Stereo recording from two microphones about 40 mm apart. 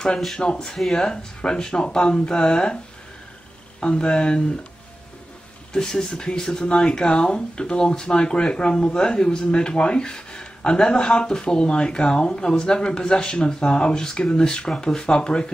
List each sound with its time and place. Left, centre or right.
0.4 s speech: left
3.8 s speech: left
5.7 s speech: centre